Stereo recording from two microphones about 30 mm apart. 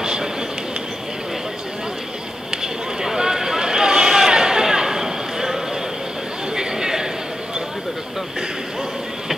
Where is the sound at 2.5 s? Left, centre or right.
Centre.